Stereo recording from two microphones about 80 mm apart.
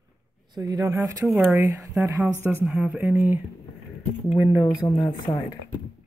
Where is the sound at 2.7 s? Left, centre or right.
Centre.